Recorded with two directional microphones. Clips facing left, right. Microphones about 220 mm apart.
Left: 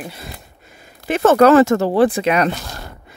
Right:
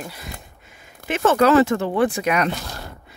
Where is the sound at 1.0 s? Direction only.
40° left (ahead or behind).